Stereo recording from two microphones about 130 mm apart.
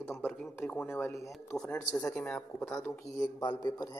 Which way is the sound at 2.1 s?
10° left (ahead or behind).